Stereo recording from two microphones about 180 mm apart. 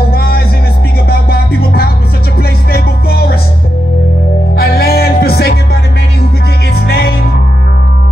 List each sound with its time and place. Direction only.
0.1 s music: 60° left (ahead or behind)
4.6 s music: 60° left (ahead or behind)
6.9 s music: 60° left (ahead or behind)